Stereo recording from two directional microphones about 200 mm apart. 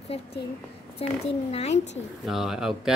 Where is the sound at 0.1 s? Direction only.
30° left (ahead or behind).